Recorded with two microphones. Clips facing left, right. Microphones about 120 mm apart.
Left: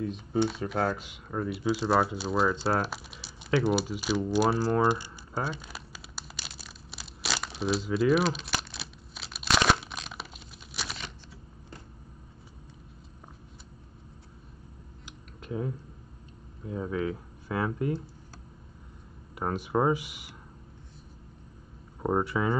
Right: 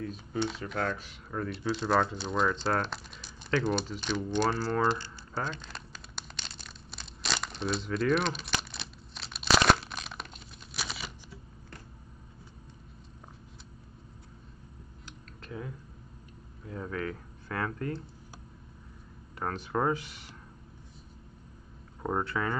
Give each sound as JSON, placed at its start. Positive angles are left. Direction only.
{"t": 0.0, "sound": "speech", "side_deg": 20}
{"t": 0.6, "sound": "speech", "side_deg": 35}
{"t": 1.0, "sound": "speech", "side_deg": 15}
{"t": 4.3, "sound": "crumpling", "side_deg": 10}
{"t": 16.6, "sound": "speech", "side_deg": 15}
{"t": 19.3, "sound": "speech", "side_deg": 15}
{"t": 22.0, "sound": "speech", "side_deg": 15}